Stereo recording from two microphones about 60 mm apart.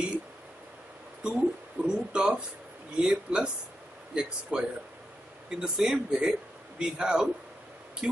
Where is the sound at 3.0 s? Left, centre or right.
Centre.